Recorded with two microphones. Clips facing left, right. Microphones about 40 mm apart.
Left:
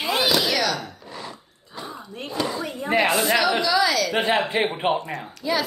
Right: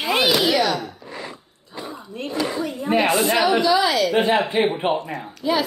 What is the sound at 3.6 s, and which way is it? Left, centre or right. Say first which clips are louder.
Speech: right 3 dB; right.